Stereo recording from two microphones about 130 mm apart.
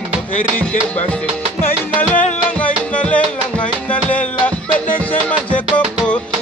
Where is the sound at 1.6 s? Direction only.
15° left (ahead or behind).